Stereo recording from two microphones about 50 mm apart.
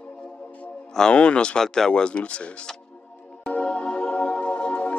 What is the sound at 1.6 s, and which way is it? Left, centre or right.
Speech, centre.